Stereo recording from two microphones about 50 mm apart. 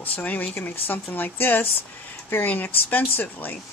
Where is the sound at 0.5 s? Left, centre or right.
Left.